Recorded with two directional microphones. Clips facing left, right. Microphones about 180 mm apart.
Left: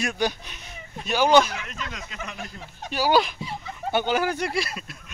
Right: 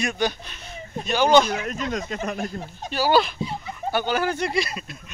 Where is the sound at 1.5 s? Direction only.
40° right (ahead or behind).